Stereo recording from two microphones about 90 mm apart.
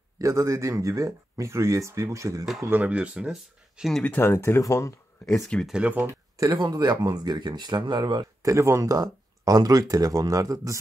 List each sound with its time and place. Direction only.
0.2 s speech: 35° right (ahead or behind)
2.7 s speech: 15° right (ahead or behind)
4.0 s speech: 20° left (ahead or behind)
5.7 s speech: 15° right (ahead or behind)
6.5 s speech: 50° right (ahead or behind)
8.4 s speech: 35° right (ahead or behind)